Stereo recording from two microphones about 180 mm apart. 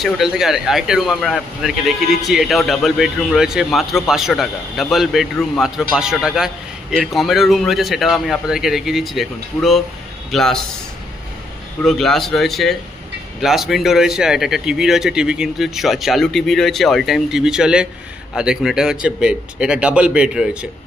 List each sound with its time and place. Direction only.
0.0 s a man's voice: centre (ahead or behind)
11.8 s a man's voice: centre (ahead or behind)